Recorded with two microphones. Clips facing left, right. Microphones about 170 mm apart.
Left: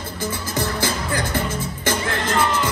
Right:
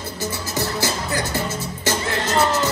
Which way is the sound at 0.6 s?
50° left (ahead or behind).